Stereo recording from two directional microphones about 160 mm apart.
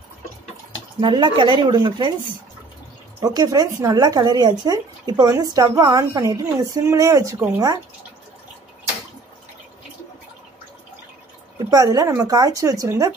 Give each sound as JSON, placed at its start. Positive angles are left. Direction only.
{"t": 1.0, "sound": "a woman's voice", "side_deg": -30}
{"t": 3.2, "sound": "a woman's voice", "side_deg": -20}
{"t": 11.5, "sound": "a woman's voice", "side_deg": -20}